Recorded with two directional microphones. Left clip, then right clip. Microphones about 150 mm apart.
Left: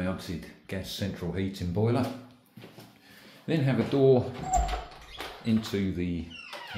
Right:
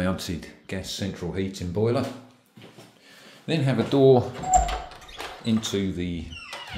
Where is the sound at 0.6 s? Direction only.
25° right (ahead or behind).